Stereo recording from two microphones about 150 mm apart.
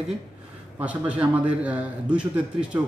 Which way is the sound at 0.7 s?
10° right (ahead or behind).